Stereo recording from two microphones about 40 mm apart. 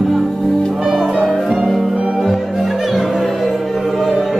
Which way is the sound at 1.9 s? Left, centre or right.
Right.